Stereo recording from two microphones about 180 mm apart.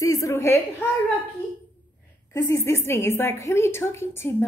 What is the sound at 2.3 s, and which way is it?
A woman's voice, 15° left (ahead or behind).